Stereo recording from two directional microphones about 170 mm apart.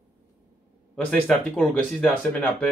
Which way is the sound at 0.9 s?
10° left (ahead or behind).